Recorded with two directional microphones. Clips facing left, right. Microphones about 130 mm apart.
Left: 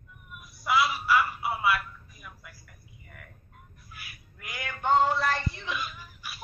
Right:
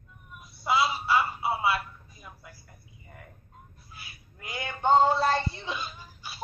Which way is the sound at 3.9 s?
25° right (ahead or behind).